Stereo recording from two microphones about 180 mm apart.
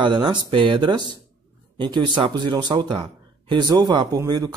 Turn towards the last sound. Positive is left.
turn(degrees=-20)  # may be behind; listen again after turning